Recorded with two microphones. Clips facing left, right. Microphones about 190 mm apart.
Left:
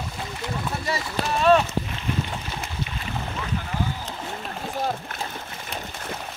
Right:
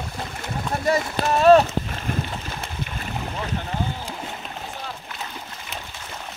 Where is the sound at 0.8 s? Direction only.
45° right (ahead or behind).